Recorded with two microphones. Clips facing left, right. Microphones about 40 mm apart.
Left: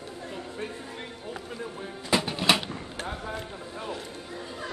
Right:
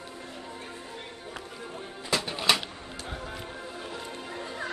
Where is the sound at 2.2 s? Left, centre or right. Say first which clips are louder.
Left 2 dB; centre.